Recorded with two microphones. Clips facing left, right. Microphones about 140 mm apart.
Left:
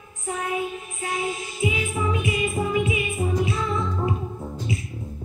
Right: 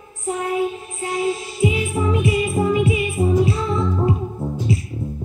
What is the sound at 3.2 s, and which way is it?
Music, 15° right (ahead or behind).